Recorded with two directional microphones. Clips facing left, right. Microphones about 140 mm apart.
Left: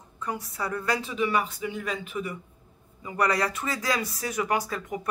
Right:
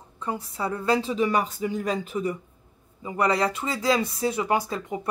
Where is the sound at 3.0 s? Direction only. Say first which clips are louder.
Right 2 dB; 25° right (ahead or behind).